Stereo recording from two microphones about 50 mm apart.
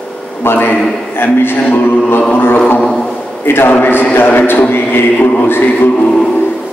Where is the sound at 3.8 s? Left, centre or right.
Left.